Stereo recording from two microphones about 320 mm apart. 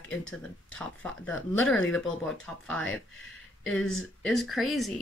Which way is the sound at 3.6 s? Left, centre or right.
Centre.